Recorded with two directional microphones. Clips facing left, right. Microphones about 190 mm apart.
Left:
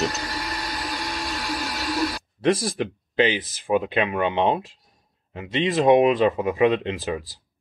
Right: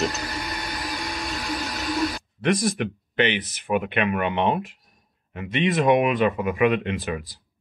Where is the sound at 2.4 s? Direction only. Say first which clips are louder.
Left 1 dB; 30° left (ahead or behind).